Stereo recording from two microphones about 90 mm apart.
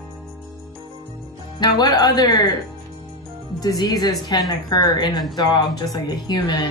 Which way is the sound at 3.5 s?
45° left (ahead or behind).